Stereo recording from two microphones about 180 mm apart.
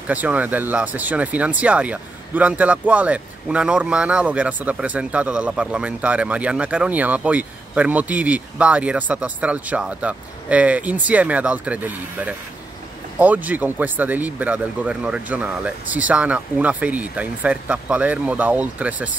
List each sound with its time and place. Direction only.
0.1 s speech: 10° right (ahead or behind)